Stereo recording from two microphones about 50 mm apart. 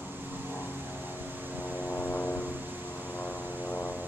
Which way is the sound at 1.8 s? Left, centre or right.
Left.